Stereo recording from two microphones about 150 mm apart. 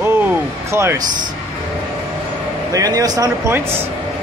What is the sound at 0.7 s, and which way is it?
Speech, 20° right (ahead or behind).